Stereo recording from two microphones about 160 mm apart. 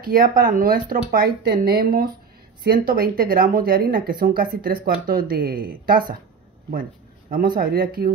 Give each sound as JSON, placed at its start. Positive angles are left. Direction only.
{"t": 0.0, "sound": "speech", "side_deg": -65}